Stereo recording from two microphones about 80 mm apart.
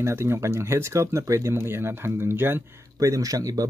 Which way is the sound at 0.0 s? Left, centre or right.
Right.